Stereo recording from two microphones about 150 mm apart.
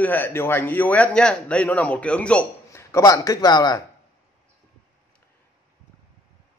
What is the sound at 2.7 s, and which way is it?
A man's voice, 20° left (ahead or behind).